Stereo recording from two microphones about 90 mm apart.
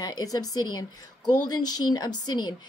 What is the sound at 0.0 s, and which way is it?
A woman's voice, 45° left (ahead or behind).